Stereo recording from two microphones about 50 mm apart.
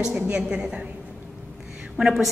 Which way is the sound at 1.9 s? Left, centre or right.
Centre.